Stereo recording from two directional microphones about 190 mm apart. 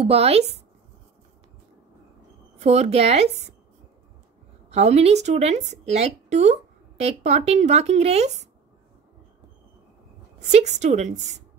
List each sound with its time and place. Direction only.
0.0 s a woman's voice: 30° right (ahead or behind)
2.6 s a woman's voice: 35° right (ahead or behind)
4.6 s a woman's voice: 35° right (ahead or behind)
10.4 s a woman's voice: 35° right (ahead or behind)